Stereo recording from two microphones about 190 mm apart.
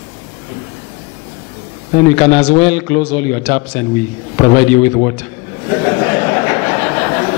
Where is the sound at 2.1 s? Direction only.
10° left (ahead or behind).